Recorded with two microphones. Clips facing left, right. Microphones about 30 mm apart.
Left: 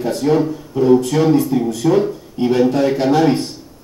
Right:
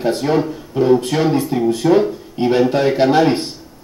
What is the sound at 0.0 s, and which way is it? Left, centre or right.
Speech, right.